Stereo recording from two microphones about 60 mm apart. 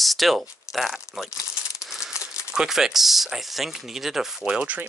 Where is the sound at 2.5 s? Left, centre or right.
Centre.